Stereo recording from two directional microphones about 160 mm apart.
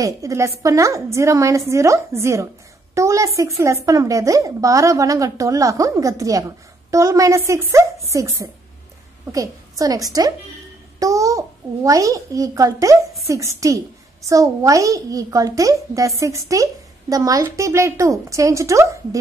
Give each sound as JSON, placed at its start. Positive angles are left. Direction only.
{"t": 0.0, "sound": "a child's voice", "side_deg": -20}